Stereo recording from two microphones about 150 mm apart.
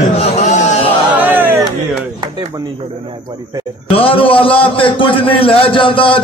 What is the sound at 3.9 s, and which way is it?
A man's voice, 35° left (ahead or behind).